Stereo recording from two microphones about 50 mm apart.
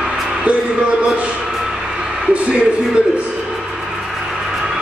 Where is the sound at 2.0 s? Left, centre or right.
Right.